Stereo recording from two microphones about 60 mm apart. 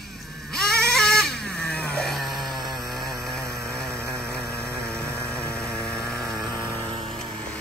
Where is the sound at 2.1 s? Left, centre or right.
Centre.